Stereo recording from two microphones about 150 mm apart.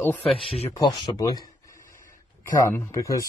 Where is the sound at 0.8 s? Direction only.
25° left (ahead or behind).